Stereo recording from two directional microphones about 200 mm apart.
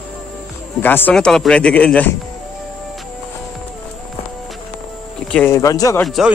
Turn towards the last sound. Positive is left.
turn(degrees=0)  # may be behind; listen again after turning